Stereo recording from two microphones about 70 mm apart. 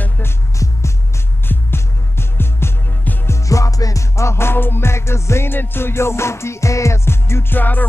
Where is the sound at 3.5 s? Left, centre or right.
Left.